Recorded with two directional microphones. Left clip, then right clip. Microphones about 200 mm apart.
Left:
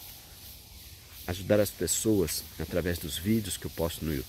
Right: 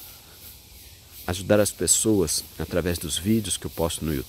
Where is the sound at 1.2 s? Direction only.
25° right (ahead or behind).